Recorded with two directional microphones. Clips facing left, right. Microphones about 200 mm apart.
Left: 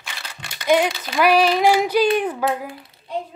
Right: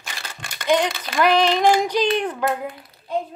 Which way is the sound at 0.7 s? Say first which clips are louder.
Left 2 dB; 5° left (ahead or behind).